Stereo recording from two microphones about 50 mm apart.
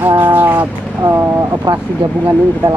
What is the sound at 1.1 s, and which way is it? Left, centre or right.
Speech, right.